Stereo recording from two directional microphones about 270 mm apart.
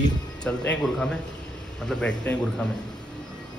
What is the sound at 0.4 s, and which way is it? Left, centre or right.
A man's voice, centre.